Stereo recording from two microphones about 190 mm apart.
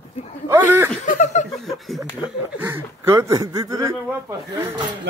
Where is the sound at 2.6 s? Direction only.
10° right (ahead or behind).